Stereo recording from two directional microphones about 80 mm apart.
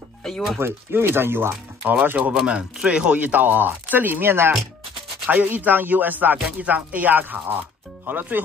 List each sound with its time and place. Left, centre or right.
0.2 s speech: centre
0.6 s speech: right